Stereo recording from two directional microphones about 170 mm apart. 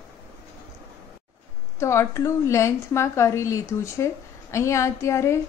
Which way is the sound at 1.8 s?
15° left (ahead or behind).